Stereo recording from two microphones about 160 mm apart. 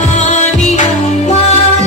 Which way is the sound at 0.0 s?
50° left (ahead or behind).